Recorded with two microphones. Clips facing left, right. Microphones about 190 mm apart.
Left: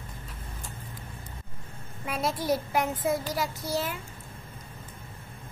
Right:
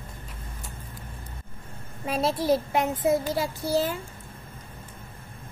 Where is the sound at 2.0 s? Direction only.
30° right (ahead or behind).